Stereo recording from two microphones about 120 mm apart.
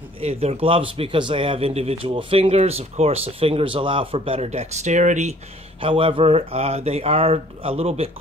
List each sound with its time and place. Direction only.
0.2 s speech: 60° right (ahead or behind); by 5.3 s 85° right
5.8 s speech: 45° right (ahead or behind)